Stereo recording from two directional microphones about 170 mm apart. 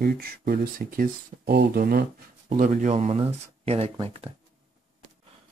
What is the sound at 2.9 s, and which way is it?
Speech, 40° right (ahead or behind).